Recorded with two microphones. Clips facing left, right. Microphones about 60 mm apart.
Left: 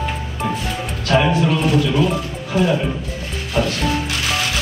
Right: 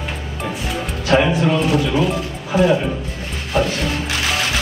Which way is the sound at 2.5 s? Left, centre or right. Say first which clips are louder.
Right 3 dB; centre.